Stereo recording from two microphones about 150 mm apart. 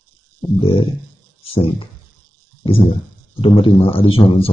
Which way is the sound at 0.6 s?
35° left (ahead or behind).